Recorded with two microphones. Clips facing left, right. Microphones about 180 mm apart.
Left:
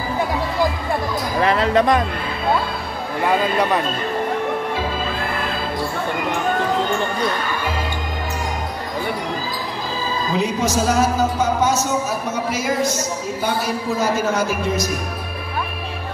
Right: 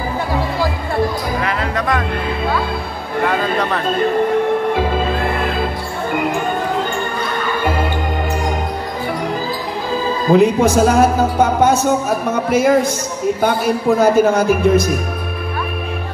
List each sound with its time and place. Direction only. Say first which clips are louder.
1.4 s speech: left 4 dB; 30° left (ahead or behind)
3.3 s speech: left 1 dB; 10° left (ahead or behind)
10.3 s speech: right 10 dB; 55° right (ahead or behind)